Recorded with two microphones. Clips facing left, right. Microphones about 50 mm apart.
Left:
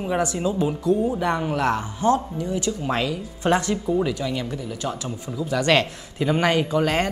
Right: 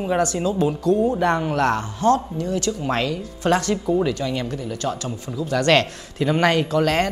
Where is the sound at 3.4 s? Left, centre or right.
Left.